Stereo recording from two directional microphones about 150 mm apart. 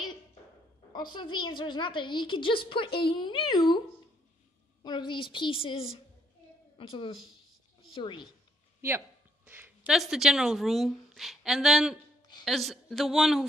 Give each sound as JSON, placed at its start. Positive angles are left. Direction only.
{"t": 1.1, "sound": "a child's voice", "side_deg": 30}
{"t": 4.8, "sound": "a child's voice", "side_deg": 30}
{"t": 9.5, "sound": "a woman's voice", "side_deg": -10}